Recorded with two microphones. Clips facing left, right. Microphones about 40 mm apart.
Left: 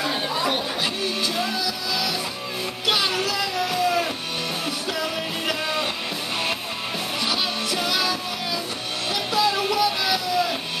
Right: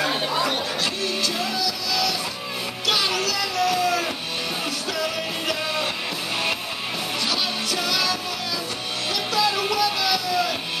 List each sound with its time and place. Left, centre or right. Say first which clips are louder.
0.0 s chatter: right 2 dB; centre
1.3 s music: even; centre
7.2 s music: left 1 dB; centre